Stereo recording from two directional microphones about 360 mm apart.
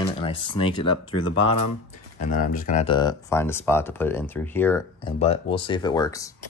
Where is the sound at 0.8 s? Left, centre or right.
Left.